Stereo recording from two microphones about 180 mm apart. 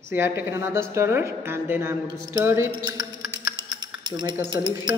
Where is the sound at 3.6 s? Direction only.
25° right (ahead or behind).